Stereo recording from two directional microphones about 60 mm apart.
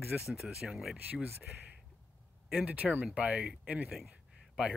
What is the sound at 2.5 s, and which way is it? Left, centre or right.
Speech, right.